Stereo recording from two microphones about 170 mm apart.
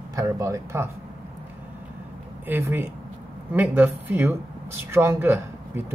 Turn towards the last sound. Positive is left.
turn(degrees=-15)  # may be behind; listen again after turning